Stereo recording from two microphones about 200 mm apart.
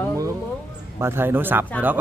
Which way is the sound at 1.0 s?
10° right (ahead or behind).